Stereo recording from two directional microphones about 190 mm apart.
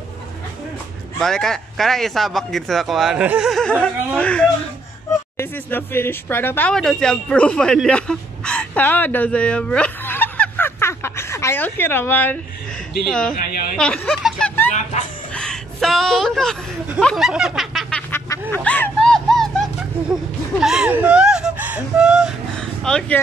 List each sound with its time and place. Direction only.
1.2 s speech: centre (ahead or behind)
13.3 s a woman's voice: 50° left (ahead or behind)
13.7 s a woman's voice: 5° left (ahead or behind)